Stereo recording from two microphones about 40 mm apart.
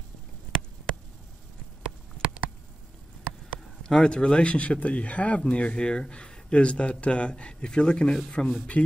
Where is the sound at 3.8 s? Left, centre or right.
Centre.